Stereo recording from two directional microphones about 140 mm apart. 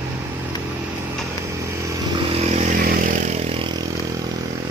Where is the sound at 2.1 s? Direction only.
50° right (ahead or behind).